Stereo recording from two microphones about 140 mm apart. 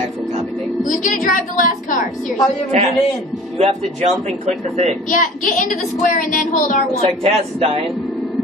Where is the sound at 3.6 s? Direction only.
50° right (ahead or behind).